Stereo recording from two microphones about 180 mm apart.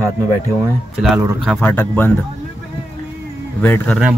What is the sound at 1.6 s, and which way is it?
Speech, 10° left (ahead or behind).